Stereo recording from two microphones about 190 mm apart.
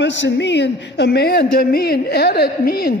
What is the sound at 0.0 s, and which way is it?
A man's voice, 70° left (ahead or behind).